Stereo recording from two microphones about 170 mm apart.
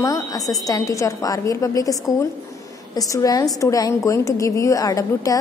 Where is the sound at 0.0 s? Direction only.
20° left (ahead or behind).